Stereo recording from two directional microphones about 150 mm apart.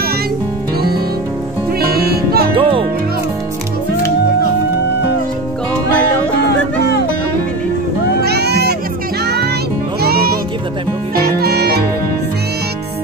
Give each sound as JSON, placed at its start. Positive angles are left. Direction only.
{"t": 1.8, "sound": "music", "side_deg": -90}
{"t": 2.5, "sound": "music", "side_deg": -35}
{"t": 6.4, "sound": "music", "side_deg": 90}
{"t": 8.2, "sound": "a sound", "side_deg": -90}
{"t": 9.2, "sound": "music", "side_deg": -90}